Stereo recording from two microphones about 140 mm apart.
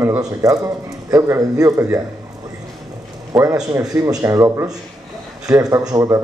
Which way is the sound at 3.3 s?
25° right (ahead or behind).